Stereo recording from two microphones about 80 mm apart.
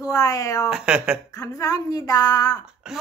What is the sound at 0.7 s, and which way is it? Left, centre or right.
Speech, centre.